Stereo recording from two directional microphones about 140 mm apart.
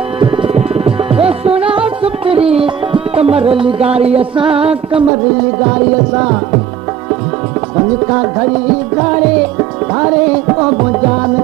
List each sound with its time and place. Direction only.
0.6 s music: 45° right (ahead or behind)
5.6 s music: 25° right (ahead or behind)
7.7 s music: 25° right (ahead or behind)
10.6 s music: 25° right (ahead or behind)